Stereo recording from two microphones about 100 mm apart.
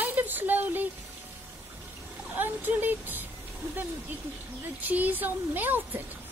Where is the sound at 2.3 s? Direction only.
20° right (ahead or behind).